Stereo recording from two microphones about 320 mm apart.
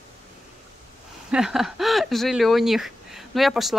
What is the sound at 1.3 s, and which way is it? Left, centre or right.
Speech, centre.